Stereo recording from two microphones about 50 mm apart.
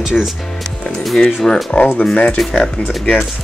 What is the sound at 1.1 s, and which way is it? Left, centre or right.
Speech, centre.